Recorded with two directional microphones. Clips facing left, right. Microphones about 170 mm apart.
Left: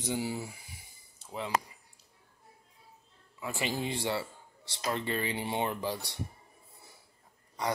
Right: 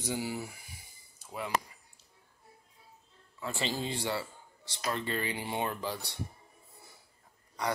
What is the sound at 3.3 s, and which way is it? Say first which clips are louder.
A man's voice: left 1 dB; 15° left (ahead or behind).